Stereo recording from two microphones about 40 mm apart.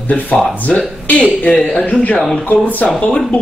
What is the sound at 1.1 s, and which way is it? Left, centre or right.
Speech, left.